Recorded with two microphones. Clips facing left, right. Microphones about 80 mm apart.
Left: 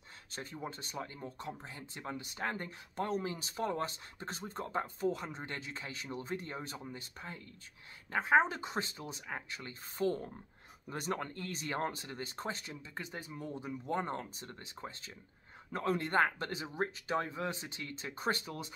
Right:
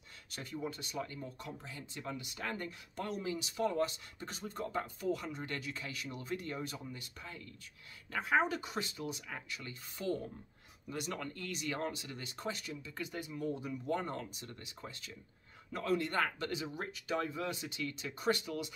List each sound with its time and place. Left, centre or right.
0.3 s speech: left